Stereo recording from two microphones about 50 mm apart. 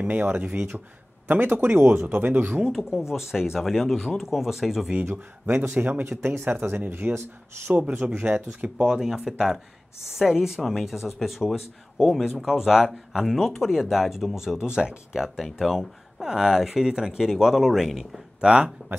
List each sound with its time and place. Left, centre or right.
0.1 s speech: right
3.1 s speech: centre
5.5 s speech: right
7.9 s speech: right
8.2 s speech: right; by 18.2 s centre
18.4 s speech: right